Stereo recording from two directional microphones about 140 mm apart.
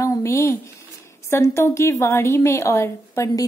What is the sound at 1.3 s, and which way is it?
A woman's voice, 20° left (ahead or behind).